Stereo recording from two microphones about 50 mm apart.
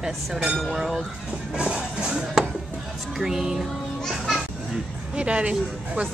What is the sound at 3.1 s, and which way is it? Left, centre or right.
Music, centre.